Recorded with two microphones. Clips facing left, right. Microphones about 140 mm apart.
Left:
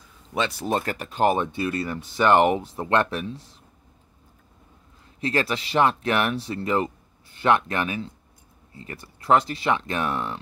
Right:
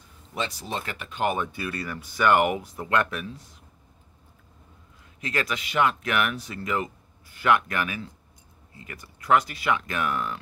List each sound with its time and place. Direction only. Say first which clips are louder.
0.3 s speech: left 6 dB; 70° left (ahead or behind); by 3.4 s 30° left (ahead or behind)
5.2 s speech: left 5 dB; 30° left (ahead or behind)